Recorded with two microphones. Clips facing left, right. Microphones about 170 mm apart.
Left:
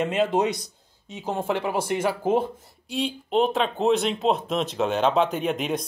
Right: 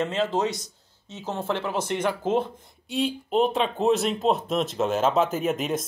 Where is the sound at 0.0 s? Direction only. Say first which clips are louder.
Left 2 dB; 15° left (ahead or behind).